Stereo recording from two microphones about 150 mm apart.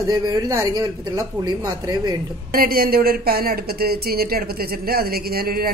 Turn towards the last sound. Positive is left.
turn(degrees=-85)